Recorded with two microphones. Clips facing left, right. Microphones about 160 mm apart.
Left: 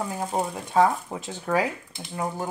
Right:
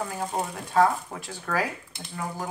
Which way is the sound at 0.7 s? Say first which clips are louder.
Left 1 dB; 20° left (ahead or behind).